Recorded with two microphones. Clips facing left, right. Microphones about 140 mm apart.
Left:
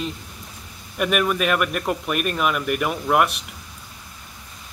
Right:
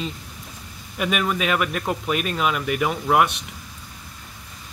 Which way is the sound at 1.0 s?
5° left (ahead or behind).